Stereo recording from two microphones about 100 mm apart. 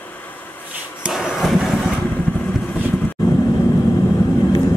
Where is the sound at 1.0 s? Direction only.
5° right (ahead or behind).